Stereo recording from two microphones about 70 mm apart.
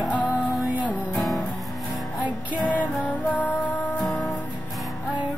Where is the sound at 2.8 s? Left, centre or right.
Left.